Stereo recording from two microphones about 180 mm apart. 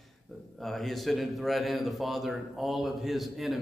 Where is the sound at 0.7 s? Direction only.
Centre (ahead or behind).